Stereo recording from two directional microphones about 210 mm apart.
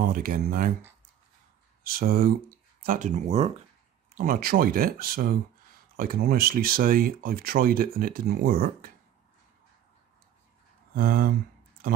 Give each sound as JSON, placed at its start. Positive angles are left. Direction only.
{"t": 0.0, "sound": "speech", "side_deg": -40}
{"t": 1.8, "sound": "speech", "side_deg": -45}
{"t": 4.1, "sound": "speech", "side_deg": -40}
{"t": 11.0, "sound": "speech", "side_deg": -45}